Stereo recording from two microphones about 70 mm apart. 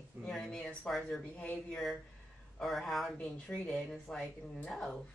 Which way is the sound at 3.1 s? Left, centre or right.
Centre.